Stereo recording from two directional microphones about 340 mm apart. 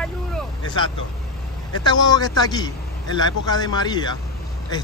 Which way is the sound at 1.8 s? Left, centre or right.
Centre.